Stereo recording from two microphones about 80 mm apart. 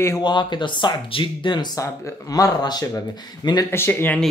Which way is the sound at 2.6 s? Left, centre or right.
Left.